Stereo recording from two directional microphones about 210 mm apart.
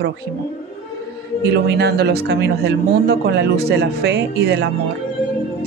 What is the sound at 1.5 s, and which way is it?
Speech, 50° right (ahead or behind).